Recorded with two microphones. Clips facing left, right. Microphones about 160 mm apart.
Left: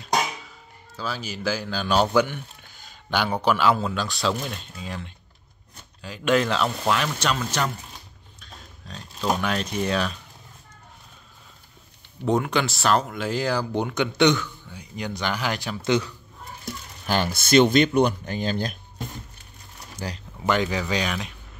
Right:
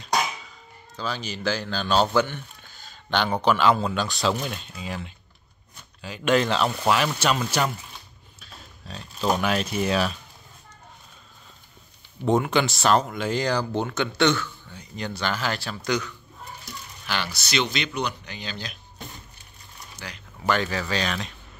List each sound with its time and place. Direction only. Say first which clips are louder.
0.9 s speech: even; 5° left (ahead or behind)
12.3 s speech: right 1 dB; centre (ahead or behind); by 16.2 s 25° left (ahead or behind)
17.0 s speech: left 6 dB; 45° left (ahead or behind)
20.0 s speech: left 7 dB; 45° left (ahead or behind)
20.4 s speech: left 2 dB; 15° left (ahead or behind)